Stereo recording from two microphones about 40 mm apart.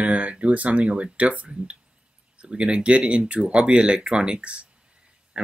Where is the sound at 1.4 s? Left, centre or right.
Right.